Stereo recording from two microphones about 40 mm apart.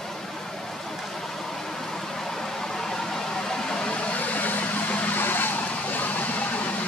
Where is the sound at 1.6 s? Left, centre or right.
Centre.